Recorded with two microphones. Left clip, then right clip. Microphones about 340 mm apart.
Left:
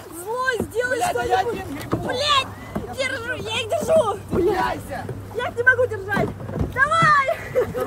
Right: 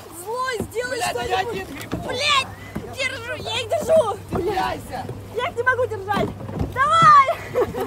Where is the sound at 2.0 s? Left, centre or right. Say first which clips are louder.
Even; centre.